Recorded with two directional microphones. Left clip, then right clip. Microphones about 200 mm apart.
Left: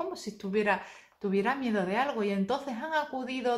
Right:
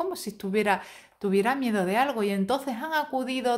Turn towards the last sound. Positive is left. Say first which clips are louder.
# right 4 dB
turn(degrees=-40)  # may be behind; listen again after turning